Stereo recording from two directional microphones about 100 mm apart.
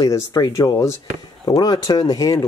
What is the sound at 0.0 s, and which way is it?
Speech, 35° left (ahead or behind).